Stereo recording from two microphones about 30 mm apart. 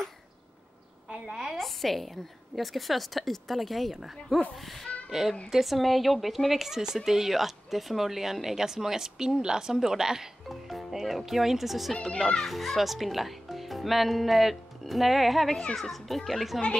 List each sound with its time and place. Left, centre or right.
1.0 s a sound: right
1.3 s a sound: centre
1.6 s a woman's voice: centre
10.5 s speech: centre
12.2 s a child's voice: centre
12.4 s a child's voice: centre